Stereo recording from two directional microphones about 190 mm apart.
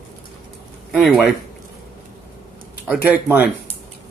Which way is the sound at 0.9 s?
Centre (ahead or behind).